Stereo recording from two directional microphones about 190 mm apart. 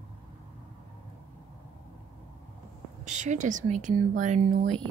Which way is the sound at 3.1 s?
40° right (ahead or behind).